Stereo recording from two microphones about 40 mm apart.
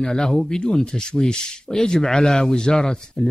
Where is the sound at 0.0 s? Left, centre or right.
Centre.